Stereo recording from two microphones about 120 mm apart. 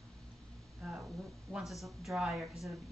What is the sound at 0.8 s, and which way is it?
A woman's voice, 5° right (ahead or behind).